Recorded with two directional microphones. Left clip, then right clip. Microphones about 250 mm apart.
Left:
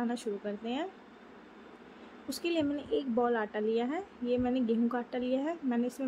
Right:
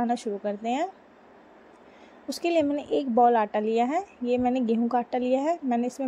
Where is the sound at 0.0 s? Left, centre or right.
Right.